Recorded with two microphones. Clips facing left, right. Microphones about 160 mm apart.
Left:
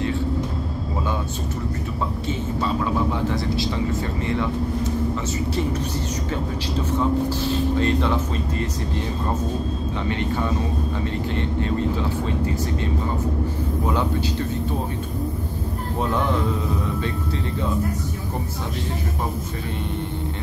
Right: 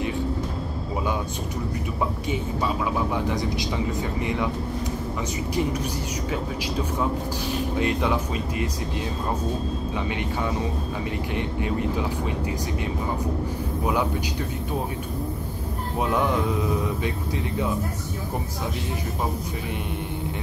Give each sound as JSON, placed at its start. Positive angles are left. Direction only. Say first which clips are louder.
{"t": 2.6, "sound": "speech", "louder": "left 4 dB", "side_deg": -15}
{"t": 7.8, "sound": "speech", "louder": "left 2 dB", "side_deg": -10}
{"t": 11.3, "sound": "speech", "louder": "left 2 dB", "side_deg": -15}